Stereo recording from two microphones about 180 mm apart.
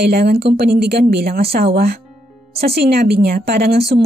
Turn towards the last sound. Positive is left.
turn(degrees=-60)  # may be behind; listen again after turning